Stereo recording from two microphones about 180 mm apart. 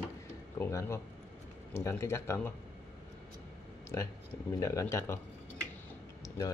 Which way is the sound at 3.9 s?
15° left (ahead or behind).